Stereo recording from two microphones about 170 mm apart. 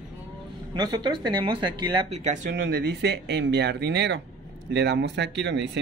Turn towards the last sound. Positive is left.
turn(degrees=-90)